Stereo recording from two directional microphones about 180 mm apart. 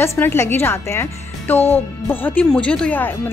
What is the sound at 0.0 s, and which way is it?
Speech, 15° left (ahead or behind).